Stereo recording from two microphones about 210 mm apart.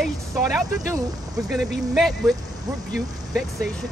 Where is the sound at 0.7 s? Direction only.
15° right (ahead or behind).